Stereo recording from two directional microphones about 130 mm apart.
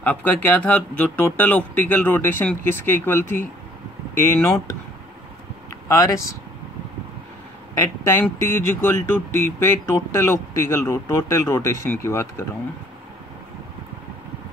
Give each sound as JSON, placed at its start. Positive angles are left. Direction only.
{"t": 0.0, "sound": "speech", "side_deg": 15}
{"t": 5.9, "sound": "speech", "side_deg": 25}
{"t": 7.7, "sound": "speech", "side_deg": 20}